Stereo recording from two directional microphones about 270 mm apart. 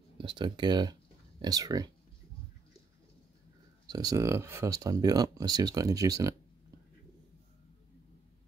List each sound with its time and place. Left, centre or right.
0.2 s speech: centre
3.8 s speech: centre